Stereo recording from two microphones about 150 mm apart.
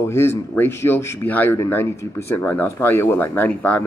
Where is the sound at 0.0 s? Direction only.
15° left (ahead or behind).